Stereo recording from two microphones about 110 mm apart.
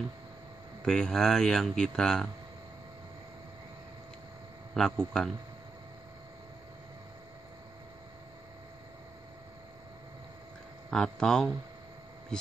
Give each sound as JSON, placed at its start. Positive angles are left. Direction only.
{"t": 0.8, "sound": "speech", "side_deg": 5}
{"t": 4.7, "sound": "speech", "side_deg": 5}
{"t": 10.9, "sound": "speech", "side_deg": 5}